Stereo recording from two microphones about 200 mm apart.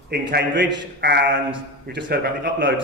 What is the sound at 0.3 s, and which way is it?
A man's voice, 55° right (ahead or behind).